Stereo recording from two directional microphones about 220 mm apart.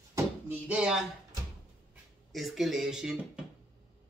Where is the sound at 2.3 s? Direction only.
Centre (ahead or behind).